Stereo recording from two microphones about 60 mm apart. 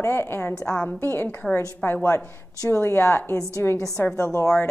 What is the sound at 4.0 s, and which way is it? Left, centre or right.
Speech, left.